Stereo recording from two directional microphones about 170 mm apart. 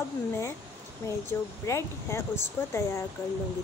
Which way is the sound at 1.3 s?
15° left (ahead or behind).